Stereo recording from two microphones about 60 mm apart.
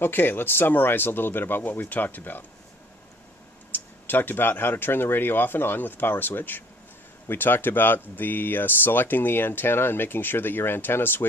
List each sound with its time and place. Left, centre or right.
0.0 s speech: left
3.7 s speech: left